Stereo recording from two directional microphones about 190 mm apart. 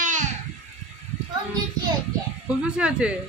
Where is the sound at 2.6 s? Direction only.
5° right (ahead or behind).